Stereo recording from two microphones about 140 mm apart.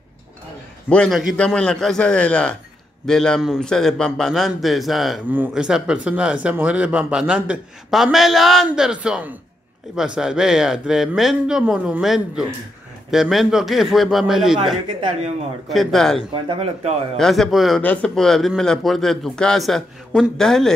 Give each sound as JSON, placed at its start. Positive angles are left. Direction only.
{"t": 0.8, "sound": "a man's voice", "side_deg": 5}
{"t": 15.7, "sound": "a man's voice", "side_deg": 0}
{"t": 16.3, "sound": "speech", "side_deg": -40}
{"t": 17.2, "sound": "a man's voice", "side_deg": 0}